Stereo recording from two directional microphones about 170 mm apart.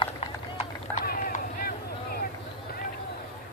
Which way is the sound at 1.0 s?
55° left (ahead or behind).